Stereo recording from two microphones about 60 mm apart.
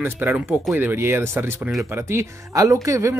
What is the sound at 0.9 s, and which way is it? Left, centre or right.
Speech, right.